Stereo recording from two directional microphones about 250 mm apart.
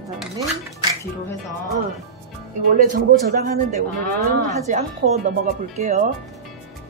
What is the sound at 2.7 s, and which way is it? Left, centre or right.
Speech, right.